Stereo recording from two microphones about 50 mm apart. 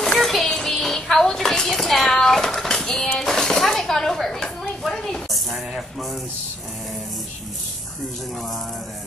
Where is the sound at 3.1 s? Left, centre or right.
Centre.